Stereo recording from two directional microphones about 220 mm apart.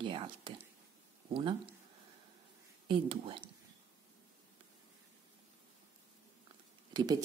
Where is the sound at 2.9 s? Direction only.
25° right (ahead or behind).